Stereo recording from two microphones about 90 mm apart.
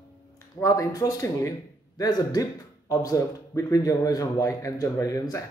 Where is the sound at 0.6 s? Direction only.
40° left (ahead or behind).